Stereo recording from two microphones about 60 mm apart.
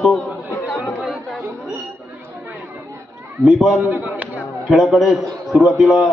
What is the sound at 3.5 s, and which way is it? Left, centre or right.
Speech, centre.